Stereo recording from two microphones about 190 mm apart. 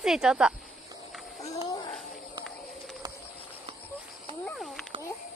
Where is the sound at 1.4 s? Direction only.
25° left (ahead or behind).